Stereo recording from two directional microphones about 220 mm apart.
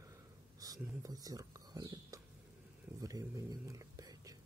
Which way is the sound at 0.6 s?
15° right (ahead or behind).